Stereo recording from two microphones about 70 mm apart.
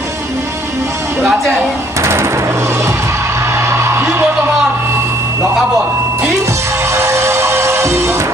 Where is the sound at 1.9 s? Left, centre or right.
Right.